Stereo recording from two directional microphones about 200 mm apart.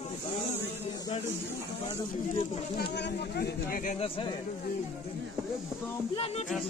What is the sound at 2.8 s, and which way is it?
Speech, 55° left (ahead or behind).